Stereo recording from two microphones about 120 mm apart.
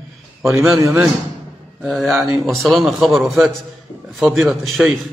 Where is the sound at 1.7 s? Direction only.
5° left (ahead or behind).